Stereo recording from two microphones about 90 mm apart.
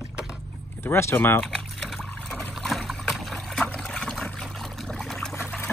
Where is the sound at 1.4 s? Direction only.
5° left (ahead or behind).